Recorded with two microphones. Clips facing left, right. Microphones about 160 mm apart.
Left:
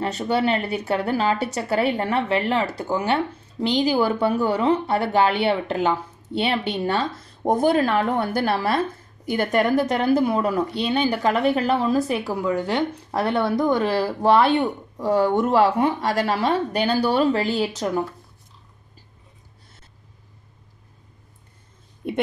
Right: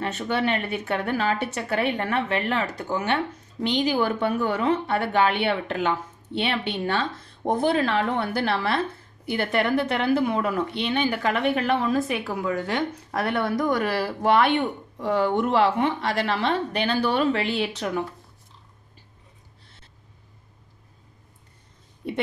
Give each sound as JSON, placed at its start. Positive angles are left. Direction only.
{"t": 0.0, "sound": "a woman's voice", "side_deg": 35}